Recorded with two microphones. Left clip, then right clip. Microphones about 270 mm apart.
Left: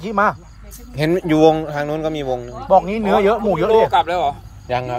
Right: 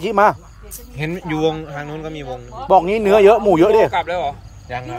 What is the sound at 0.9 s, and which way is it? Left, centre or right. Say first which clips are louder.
A man's voice: left 7 dB; centre.